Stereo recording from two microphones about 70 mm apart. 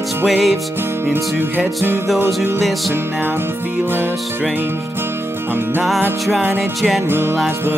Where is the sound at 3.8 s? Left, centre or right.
Right.